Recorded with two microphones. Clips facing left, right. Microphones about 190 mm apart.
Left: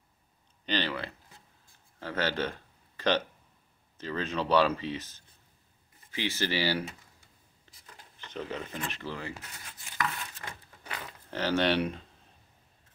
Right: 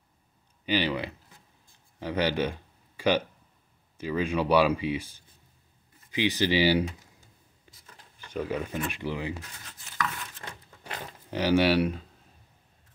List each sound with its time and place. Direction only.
0.7 s speech: 15° right (ahead or behind)
7.7 s writing: 10° right (ahead or behind)
8.2 s speech: 10° right (ahead or behind)
11.2 s speech: 10° right (ahead or behind)